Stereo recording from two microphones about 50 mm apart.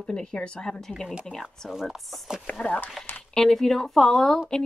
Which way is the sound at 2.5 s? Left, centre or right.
Left.